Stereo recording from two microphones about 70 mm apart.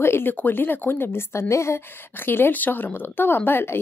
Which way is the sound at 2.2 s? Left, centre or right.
Left.